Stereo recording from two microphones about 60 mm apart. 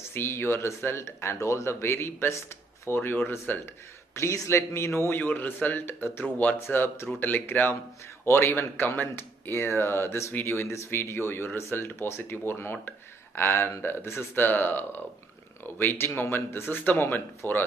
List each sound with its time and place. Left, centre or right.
0.1 s speech: left
3.0 s a man's voice: left
4.1 s a man's voice: left
8.7 s a man's voice: left